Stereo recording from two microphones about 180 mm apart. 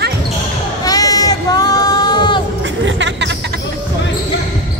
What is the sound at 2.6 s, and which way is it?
Music, 85° right.